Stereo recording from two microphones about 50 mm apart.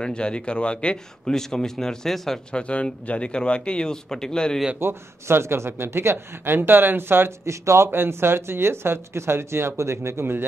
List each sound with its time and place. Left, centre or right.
0.0 s a man's voice: centre
2.5 s speech: left
4.7 s speech: right
7.4 s speech: right
7.9 s speech: right